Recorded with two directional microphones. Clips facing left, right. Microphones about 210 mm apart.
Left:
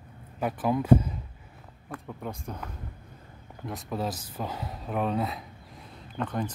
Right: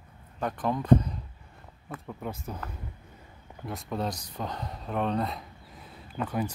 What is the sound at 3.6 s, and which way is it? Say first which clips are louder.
Speech: even; centre (ahead or behind).